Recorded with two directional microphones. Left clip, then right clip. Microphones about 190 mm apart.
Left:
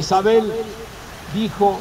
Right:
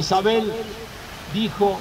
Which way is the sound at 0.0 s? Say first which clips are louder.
Left 4 dB; 5° right (ahead or behind).